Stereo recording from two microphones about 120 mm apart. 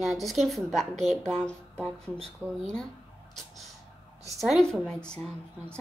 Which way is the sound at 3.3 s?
Centre (ahead or behind).